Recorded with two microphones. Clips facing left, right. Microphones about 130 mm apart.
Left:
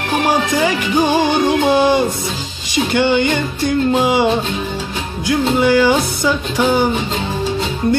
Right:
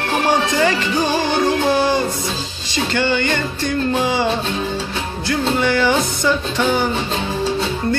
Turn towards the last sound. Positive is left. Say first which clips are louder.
# left 3 dB
turn(degrees=15)  # may be behind; listen again after turning